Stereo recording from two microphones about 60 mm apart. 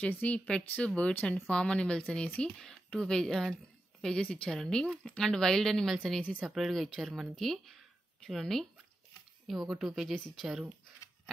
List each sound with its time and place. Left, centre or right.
0.1 s speech: left; by 10.5 s centre